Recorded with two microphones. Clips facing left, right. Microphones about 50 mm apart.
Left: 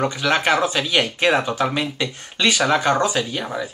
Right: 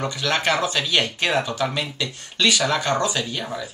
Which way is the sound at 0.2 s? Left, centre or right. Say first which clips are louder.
Left 2 dB; centre.